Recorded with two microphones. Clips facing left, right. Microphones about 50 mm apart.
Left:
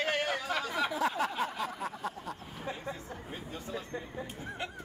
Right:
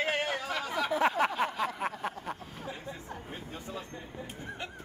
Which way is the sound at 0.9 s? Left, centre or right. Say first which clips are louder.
Right 8 dB; right.